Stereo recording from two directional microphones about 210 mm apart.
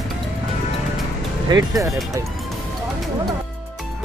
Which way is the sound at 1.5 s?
15° right (ahead or behind).